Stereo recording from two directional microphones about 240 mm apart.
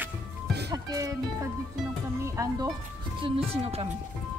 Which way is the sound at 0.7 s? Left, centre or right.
Centre.